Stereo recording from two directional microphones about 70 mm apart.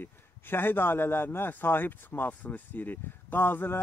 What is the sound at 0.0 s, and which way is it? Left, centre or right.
A man's voice, left.